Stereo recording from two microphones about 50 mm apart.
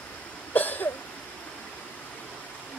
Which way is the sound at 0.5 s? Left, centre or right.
Left.